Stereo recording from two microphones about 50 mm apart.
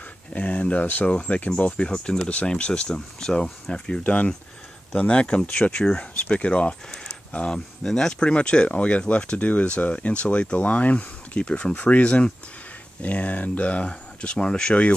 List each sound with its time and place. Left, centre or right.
0.3 s speech: left; by 4.0 s centre
4.0 s speech: left